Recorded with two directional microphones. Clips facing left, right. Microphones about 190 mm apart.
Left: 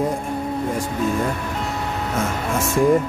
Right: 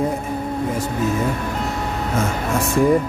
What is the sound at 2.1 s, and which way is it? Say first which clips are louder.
Speech: right 2 dB; centre (ahead or behind).